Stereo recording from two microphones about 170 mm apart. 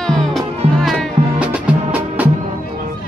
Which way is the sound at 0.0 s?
5° left (ahead or behind).